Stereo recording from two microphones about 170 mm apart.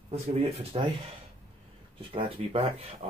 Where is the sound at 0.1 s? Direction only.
35° right (ahead or behind).